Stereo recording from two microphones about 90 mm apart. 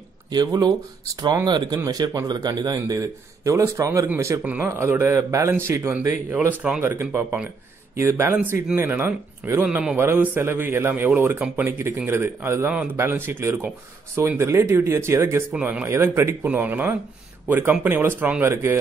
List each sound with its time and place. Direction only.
0.3 s a man's voice: 50° right (ahead or behind); by 6.1 s 30° right (ahead or behind)
6.9 s a man's voice: 20° right (ahead or behind)
9.6 s a man's voice: 15° right (ahead or behind)
15.5 s a man's voice: 20° right (ahead or behind)